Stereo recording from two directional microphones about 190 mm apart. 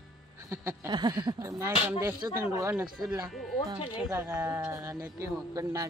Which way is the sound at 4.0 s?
15° right (ahead or behind).